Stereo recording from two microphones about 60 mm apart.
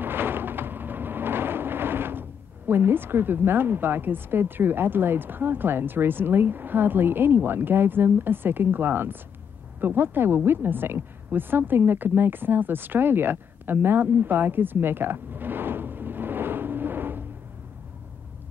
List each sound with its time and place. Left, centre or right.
0.0 s vehicle: right
2.7 s a woman's voice: right